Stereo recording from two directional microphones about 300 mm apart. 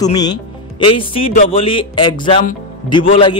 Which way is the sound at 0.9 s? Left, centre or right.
Centre.